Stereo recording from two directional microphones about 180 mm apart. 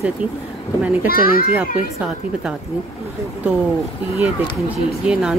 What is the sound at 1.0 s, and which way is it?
Speech, 55° left (ahead or behind).